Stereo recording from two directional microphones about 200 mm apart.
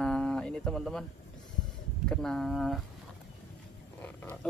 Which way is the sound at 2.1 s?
5° left (ahead or behind).